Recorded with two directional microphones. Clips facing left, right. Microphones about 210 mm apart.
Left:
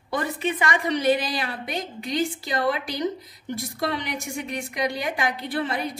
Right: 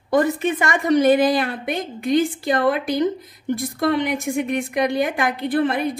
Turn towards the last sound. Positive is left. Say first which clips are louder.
# right 7 dB
turn(degrees=-55)  # may be behind; listen again after turning